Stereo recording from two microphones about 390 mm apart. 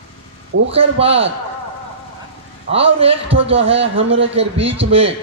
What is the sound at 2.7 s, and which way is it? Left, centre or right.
A man's voice, centre.